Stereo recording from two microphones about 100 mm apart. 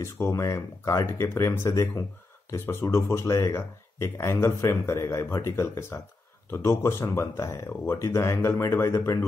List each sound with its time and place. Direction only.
0.0 s speech: 30° left (ahead or behind)